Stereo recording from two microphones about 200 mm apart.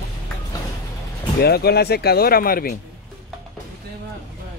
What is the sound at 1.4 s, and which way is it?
Speech, 50° left (ahead or behind).